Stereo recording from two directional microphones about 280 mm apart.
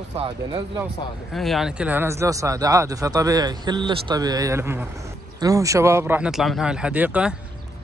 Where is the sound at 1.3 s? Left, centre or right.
Centre.